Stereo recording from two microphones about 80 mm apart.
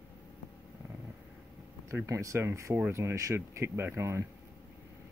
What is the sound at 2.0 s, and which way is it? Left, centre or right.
Speech, right.